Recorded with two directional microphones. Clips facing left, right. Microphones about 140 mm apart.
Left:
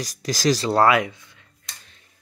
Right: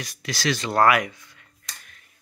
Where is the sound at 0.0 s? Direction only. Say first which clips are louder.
Left 5 dB; 40° left (ahead or behind); by 1.4 s 20° left (ahead or behind).